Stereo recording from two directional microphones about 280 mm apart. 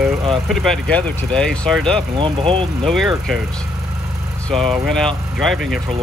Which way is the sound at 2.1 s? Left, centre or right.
Centre.